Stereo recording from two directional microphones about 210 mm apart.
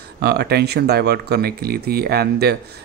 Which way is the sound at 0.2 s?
50° right (ahead or behind).